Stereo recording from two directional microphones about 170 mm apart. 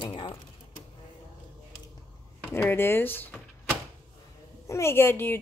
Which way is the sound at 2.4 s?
10° left (ahead or behind).